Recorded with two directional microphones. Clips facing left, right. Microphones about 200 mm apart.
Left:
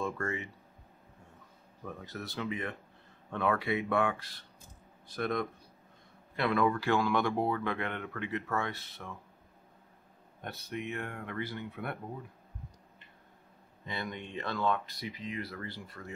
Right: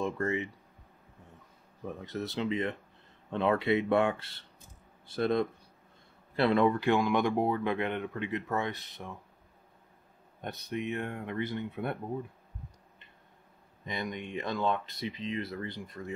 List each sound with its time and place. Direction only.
0.0 s speech: 20° right (ahead or behind)
2.0 s speech: 20° right (ahead or behind)
10.4 s speech: 20° right (ahead or behind)
13.8 s speech: 15° right (ahead or behind)